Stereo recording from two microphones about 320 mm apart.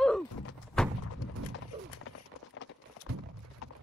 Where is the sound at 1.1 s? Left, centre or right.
Left.